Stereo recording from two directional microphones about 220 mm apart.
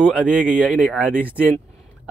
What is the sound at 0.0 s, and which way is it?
A man's voice, 5° right (ahead or behind).